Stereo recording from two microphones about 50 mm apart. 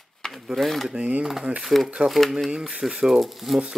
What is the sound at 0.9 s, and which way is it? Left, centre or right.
Speech, right.